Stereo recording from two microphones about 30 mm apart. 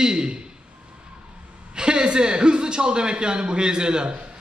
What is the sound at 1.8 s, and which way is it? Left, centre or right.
A man's voice, right.